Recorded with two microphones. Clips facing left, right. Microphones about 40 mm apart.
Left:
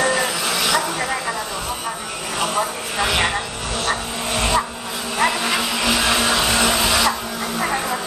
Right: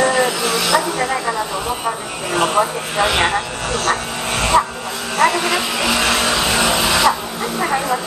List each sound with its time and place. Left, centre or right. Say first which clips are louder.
0.0 s music: right 4 dB; centre
0.4 s vehicle: right 3 dB; centre
2.6 s vehicle: right 4 dB; centre
3.9 s dog: right 3 dB; right
5.2 s a sound: right 4 dB; right
6.0 s a sound: right 1 dB; centre